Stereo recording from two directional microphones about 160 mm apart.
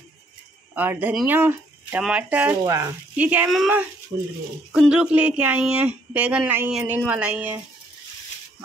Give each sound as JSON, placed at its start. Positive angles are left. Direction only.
{"t": 0.7, "sound": "speech", "side_deg": -10}
{"t": 2.6, "sound": "speech", "side_deg": -20}
{"t": 3.2, "sound": "speech", "side_deg": -10}